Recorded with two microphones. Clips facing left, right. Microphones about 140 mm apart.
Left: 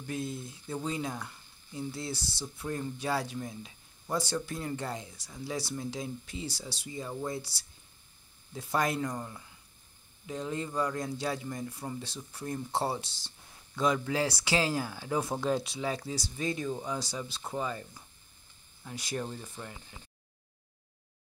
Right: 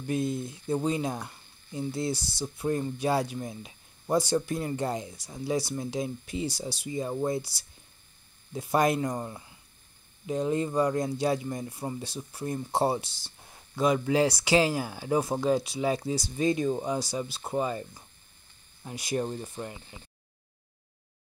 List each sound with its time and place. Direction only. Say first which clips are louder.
0.0 s speech: right 7 dB; 20° right (ahead or behind)
9.1 s speech: right 5 dB; 25° right (ahead or behind)
15.4 s speech: right 4 dB; 5° right (ahead or behind)
15.8 s speech: right 6 dB; 15° right (ahead or behind)